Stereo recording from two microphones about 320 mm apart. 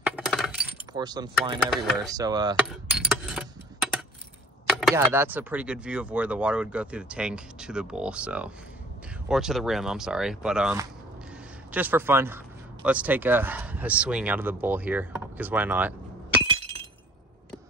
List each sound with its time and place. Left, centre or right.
0.0 s glass: centre
0.9 s speech: centre
2.6 s computer keyboard: centre
4.6 s speech: centre
16.4 s breaking: centre